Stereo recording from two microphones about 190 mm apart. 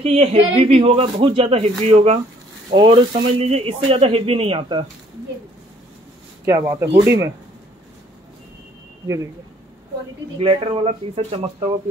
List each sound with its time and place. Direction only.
0.0 s speech: 35° right (ahead or behind)
6.4 s speech: 15° right (ahead or behind)
10.4 s speech: 30° right (ahead or behind)